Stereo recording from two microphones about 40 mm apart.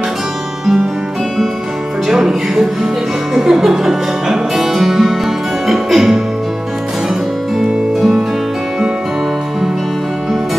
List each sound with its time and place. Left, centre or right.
2.0 s music: centre